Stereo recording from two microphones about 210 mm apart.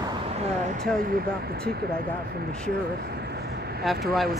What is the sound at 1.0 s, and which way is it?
Speech, 45° right (ahead or behind).